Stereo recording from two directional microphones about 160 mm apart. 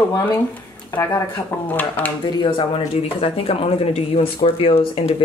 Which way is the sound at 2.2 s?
35° left (ahead or behind).